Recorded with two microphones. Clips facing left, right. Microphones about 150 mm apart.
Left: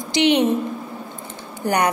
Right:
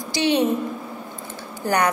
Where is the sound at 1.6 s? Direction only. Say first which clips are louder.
Left 1 dB; 15° left (ahead or behind).